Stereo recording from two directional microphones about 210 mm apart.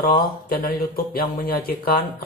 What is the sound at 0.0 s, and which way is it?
Speech, 45° left (ahead or behind).